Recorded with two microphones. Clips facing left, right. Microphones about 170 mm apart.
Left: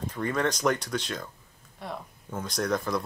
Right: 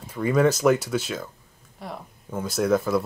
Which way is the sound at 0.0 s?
10° right (ahead or behind).